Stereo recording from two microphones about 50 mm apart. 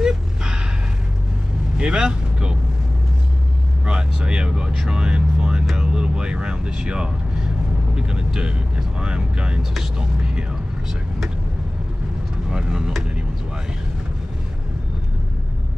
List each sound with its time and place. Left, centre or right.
0.0 s a sound: centre
1.8 s speech: centre
3.8 s speech: centre
12.4 s speech: centre